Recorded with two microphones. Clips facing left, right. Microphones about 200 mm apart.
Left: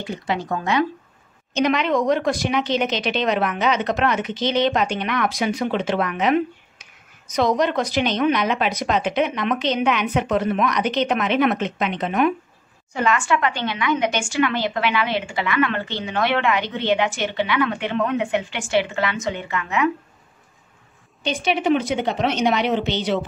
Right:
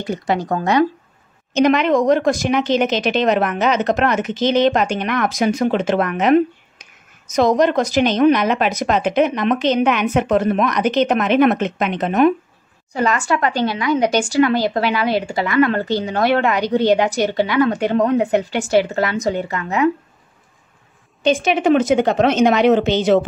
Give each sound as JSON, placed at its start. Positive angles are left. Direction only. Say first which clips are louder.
{"t": 0.0, "sound": "a woman's voice", "louder": "right 5 dB", "side_deg": -40}
{"t": 21.3, "sound": "a woman's voice", "louder": "right 5 dB", "side_deg": -45}